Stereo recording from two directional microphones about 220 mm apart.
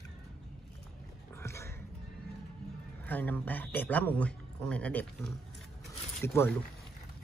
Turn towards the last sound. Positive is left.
turn(degrees=10)  # may be behind; listen again after turning